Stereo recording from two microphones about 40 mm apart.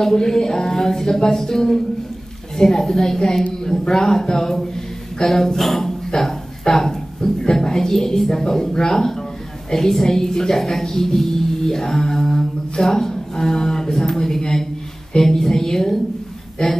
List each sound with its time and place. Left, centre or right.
0.0 s a woman's voice: centre